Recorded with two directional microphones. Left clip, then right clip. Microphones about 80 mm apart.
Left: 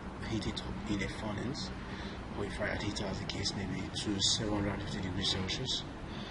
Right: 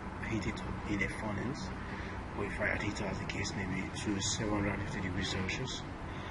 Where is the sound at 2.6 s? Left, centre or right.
Left.